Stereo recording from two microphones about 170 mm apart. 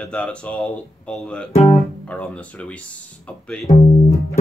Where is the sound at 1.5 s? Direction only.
35° left (ahead or behind).